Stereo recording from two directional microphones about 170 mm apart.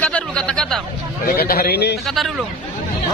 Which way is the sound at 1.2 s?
65° left (ahead or behind).